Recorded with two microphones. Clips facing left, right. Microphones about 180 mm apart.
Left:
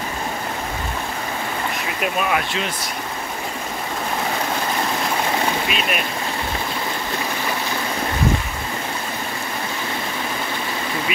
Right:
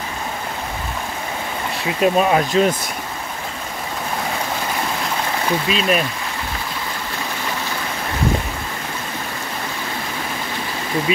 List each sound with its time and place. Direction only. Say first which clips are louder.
2.0 s speech: right 7 dB; 30° right (ahead or behind)
5.7 s speech: right 5 dB; 30° right (ahead or behind)
11.1 s speech: right 8 dB; 30° right (ahead or behind)